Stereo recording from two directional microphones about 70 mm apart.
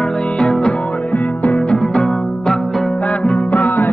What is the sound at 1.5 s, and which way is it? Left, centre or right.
Music, centre.